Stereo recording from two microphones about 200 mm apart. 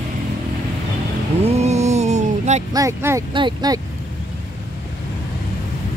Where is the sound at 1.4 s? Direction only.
30° right (ahead or behind).